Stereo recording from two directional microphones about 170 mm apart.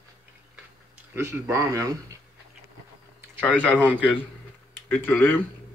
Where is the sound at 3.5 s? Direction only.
10° left (ahead or behind).